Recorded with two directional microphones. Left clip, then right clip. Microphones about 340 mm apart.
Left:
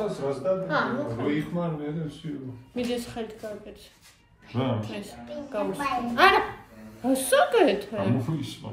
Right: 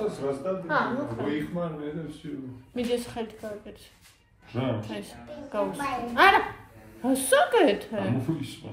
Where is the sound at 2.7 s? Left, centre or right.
Right.